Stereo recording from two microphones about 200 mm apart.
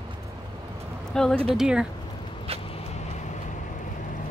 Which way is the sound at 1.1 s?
5° left (ahead or behind).